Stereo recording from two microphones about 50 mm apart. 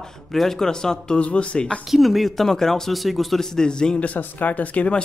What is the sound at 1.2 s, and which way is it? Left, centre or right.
Speech, left.